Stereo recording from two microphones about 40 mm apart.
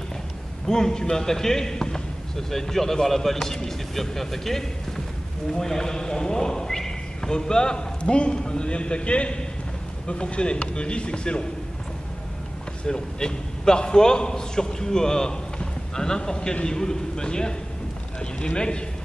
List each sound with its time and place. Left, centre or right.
0.7 s a man's voice: centre
12.8 s a man's voice: centre